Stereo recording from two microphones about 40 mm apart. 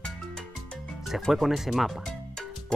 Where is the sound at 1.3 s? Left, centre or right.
Centre.